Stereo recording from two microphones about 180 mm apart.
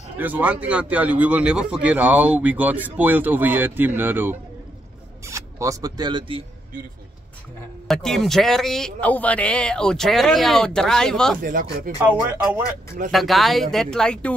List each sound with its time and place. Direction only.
0.2 s speech: 10° right (ahead or behind); by 6.4 s 25° right (ahead or behind)
7.9 s a man's voice: centre (ahead or behind)
11.4 s speech: 50° right (ahead or behind)
12.0 s speech: 10° right (ahead or behind)
13.1 s a man's voice: centre (ahead or behind)